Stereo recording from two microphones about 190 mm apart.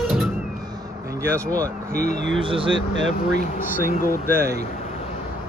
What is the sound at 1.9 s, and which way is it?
Speech, 40° left (ahead or behind).